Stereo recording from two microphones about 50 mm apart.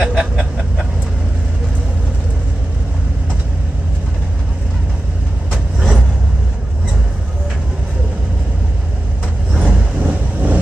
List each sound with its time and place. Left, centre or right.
0.0 s a sound: centre
5.5 s vehicle: centre
9.5 s vehicle: right